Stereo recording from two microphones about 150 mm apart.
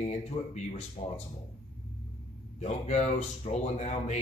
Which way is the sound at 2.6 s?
50° left (ahead or behind).